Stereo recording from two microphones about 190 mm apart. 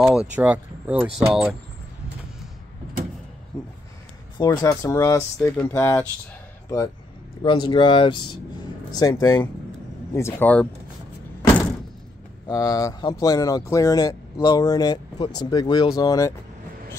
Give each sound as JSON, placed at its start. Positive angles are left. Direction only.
{"t": 0.0, "sound": "speech", "side_deg": -5}
{"t": 4.4, "sound": "speech", "side_deg": 20}
{"t": 7.4, "sound": "speech", "side_deg": 25}
{"t": 12.4, "sound": "speech", "side_deg": 20}